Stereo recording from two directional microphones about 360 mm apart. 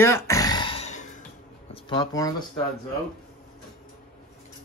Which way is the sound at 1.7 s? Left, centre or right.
Centre.